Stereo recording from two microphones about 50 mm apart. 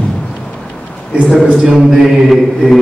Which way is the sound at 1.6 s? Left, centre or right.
Centre.